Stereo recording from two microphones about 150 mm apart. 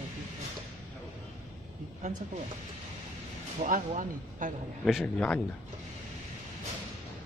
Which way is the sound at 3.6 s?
60° right (ahead or behind).